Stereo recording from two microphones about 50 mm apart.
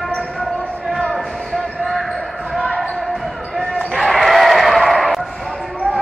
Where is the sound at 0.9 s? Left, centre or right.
Centre.